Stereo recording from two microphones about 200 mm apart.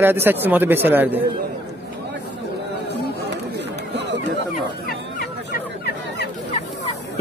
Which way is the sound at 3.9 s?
60° right (ahead or behind).